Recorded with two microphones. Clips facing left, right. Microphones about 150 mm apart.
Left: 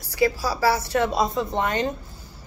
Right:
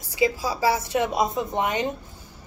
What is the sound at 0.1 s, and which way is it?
Speech, 20° right (ahead or behind).